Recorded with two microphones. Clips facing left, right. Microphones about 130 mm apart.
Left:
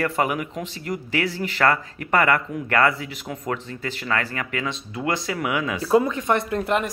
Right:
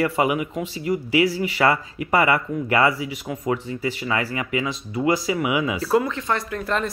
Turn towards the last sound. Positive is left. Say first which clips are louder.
# left 3 dB
turn(degrees=20)  # may be behind; listen again after turning